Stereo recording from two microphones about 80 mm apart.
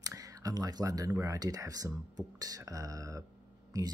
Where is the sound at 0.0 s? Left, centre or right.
Right.